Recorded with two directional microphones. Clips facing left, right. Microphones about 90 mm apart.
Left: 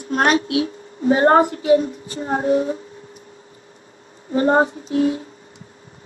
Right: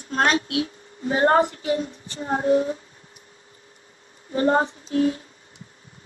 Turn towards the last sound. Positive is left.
turn(degrees=30)  # may be behind; listen again after turning